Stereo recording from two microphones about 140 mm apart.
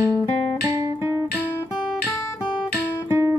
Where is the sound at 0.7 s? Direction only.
20° right (ahead or behind).